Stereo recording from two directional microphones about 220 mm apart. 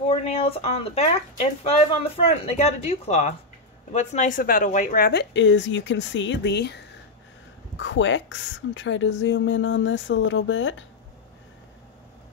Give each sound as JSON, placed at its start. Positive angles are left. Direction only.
{"t": 0.0, "sound": "a woman's voice", "side_deg": 25}